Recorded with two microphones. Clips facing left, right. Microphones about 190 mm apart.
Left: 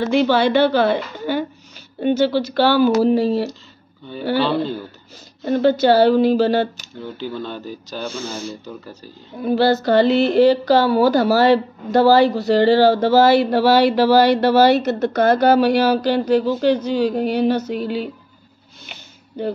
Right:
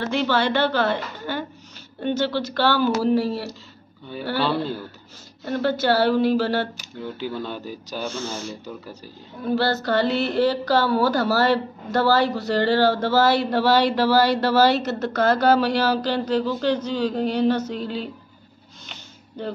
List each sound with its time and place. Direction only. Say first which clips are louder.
0.0 s a woman's voice: left 6 dB; 15° left (ahead or behind)
6.8 s speech: left 1 dB; 10° right (ahead or behind)
8.1 s a woman's voice: left 2 dB; 10° left (ahead or behind)
18.9 s a sound: left 2 dB; 10° left (ahead or behind)